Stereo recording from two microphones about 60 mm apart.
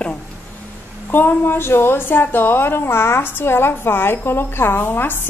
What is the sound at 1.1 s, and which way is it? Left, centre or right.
A woman's voice, left.